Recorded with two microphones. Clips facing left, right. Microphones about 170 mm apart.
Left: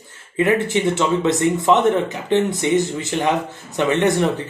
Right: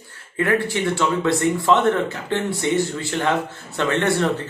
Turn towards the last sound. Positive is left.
turn(degrees=15)  # may be behind; listen again after turning